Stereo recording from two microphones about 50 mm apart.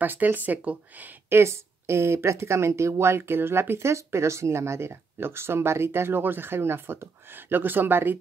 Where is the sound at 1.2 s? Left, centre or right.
Right.